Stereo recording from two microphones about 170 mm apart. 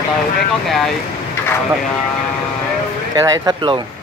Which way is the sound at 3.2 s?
25° right (ahead or behind).